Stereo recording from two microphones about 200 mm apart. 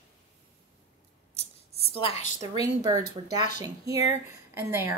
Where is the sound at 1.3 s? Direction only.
30° left (ahead or behind).